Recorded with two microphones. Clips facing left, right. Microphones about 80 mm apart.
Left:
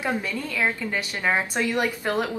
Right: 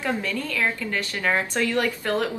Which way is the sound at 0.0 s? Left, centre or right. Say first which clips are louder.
Right 1 dB; centre.